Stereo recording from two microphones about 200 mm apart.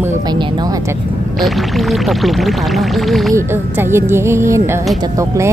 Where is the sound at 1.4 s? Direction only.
Centre (ahead or behind).